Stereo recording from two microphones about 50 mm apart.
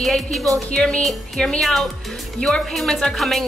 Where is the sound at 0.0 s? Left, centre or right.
Centre.